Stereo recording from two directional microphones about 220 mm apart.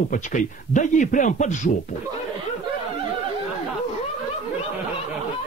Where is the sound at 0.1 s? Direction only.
35° left (ahead or behind).